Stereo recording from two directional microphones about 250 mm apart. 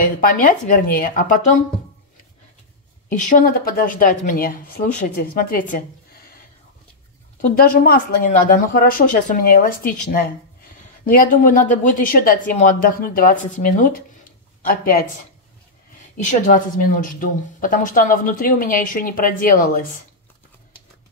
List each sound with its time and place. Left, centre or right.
0.0 s speech: left
3.1 s speech: left
7.4 s a woman's voice: left
16.2 s speech: left